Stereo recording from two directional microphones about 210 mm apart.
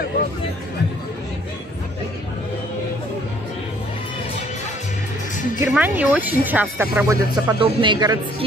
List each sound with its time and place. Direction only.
5.7 s speech: 10° right (ahead or behind)
7.5 s a woman's voice: 25° right (ahead or behind)